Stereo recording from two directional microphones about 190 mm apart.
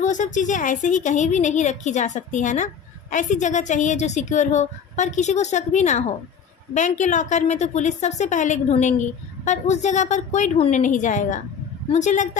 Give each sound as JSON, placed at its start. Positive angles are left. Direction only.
{"t": 0.0, "sound": "a woman's voice", "side_deg": 40}